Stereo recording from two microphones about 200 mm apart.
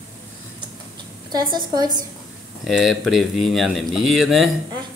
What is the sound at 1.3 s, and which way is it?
Speech, 20° right (ahead or behind).